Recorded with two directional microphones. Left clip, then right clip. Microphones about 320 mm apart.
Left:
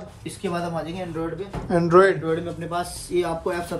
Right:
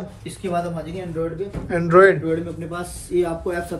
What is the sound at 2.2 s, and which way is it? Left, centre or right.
Speech, left.